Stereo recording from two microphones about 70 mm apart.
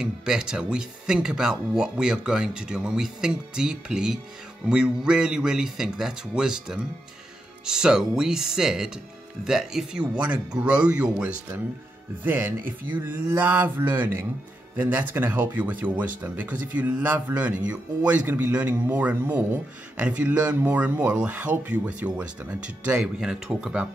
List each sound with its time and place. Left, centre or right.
0.0 s speech: centre
12.3 s speech: right; by 23.9 s centre